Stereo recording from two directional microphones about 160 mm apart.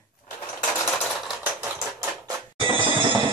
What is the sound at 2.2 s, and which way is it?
Music, 30° right (ahead or behind).